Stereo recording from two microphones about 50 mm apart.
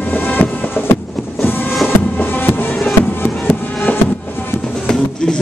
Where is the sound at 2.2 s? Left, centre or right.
Left.